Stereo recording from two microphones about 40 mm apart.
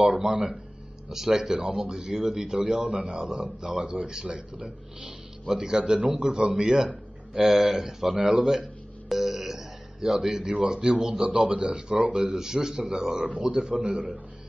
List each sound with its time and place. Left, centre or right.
1.0 s speech: centre
7.3 s a man's voice: centre
9.1 s a sound: centre
10.5 s speech: right
12.4 s a man's voice: centre